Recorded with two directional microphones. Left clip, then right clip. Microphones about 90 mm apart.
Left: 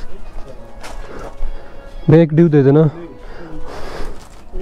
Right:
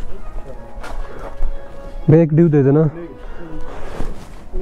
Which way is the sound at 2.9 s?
25° left (ahead or behind).